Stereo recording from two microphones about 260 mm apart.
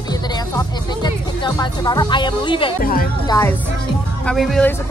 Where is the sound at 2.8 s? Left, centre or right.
Left.